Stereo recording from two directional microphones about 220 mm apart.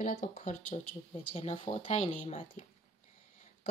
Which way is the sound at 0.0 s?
40° left (ahead or behind).